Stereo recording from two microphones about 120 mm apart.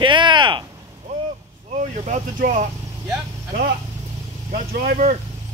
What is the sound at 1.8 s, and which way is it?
Speech, 90° right.